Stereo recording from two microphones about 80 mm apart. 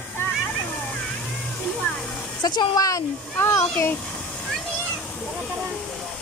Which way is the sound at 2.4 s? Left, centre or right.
Left.